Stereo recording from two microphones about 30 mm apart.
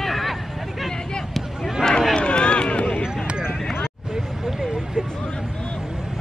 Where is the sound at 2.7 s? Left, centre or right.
Left.